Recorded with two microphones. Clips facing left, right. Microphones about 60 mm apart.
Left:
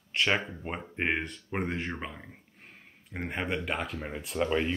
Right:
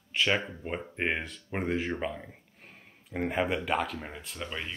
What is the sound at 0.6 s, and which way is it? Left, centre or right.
Speech, centre.